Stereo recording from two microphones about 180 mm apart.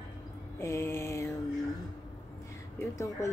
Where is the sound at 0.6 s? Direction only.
15° left (ahead or behind).